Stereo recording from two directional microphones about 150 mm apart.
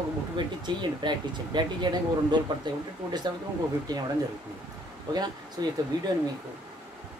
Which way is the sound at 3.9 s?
25° right (ahead or behind).